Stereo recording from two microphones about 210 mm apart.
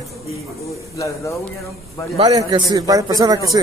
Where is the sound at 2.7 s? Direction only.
15° right (ahead or behind).